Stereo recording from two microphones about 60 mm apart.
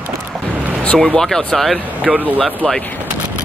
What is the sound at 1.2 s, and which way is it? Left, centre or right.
Speech, centre.